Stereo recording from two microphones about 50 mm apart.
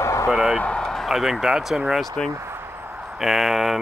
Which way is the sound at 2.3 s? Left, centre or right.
Right.